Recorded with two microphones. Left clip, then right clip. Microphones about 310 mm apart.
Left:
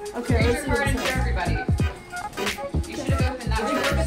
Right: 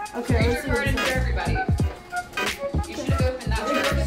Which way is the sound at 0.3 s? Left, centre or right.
Centre.